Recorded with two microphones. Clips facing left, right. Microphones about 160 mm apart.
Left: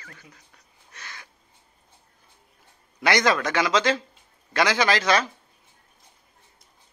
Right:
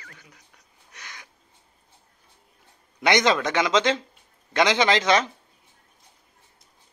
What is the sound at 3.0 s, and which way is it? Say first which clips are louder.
Speech: right 1 dB; 20° right (ahead or behind).